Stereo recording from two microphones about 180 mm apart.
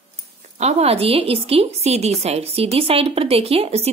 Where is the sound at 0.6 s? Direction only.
35° right (ahead or behind).